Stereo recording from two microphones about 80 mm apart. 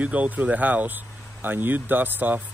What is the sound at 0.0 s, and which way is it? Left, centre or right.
A man's voice, centre.